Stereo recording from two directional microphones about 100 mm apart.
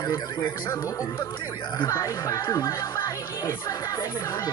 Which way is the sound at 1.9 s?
30° left (ahead or behind).